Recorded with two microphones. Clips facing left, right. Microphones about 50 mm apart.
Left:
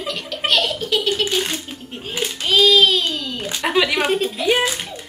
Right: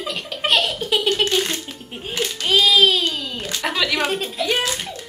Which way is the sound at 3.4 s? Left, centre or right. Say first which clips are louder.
Left 4 dB; centre.